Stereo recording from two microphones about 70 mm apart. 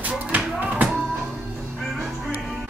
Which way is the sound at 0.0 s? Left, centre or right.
Right.